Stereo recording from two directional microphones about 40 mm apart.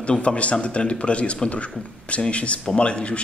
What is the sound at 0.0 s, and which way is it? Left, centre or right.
Speech, left.